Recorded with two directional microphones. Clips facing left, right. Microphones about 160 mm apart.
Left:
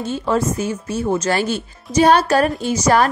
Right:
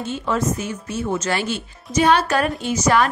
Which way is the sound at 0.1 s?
35° left (ahead or behind).